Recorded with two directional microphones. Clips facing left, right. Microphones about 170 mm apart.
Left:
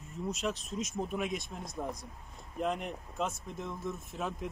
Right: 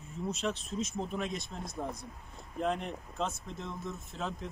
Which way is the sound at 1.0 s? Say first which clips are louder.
Left 1 dB; 10° left (ahead or behind).